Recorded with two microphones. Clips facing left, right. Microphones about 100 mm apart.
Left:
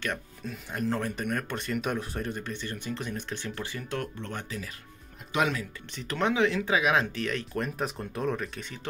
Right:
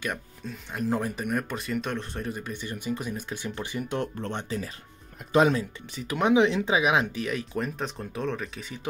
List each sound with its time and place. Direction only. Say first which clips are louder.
0.5 s speech: right 1 dB; centre (ahead or behind)
0.8 s speech: right 2 dB; 10° right (ahead or behind)
4.2 s speech: right 5 dB; 30° right (ahead or behind)
5.9 s speech: right 5 dB; 10° right (ahead or behind)